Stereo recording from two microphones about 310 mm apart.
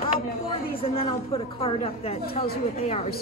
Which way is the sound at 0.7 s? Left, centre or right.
Centre.